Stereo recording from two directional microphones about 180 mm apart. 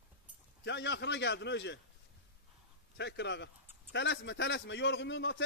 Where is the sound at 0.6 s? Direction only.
80° left.